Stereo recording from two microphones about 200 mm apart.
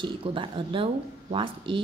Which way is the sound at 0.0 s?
25° right (ahead or behind).